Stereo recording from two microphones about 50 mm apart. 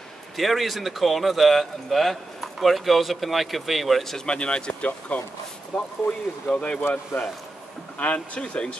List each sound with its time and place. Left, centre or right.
0.4 s a man's voice: centre
4.3 s speech: centre
7.2 s speech: left
8.0 s speech: left